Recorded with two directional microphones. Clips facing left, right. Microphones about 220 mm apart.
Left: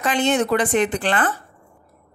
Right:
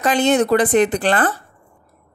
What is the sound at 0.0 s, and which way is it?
A woman's voice, 40° right (ahead or behind).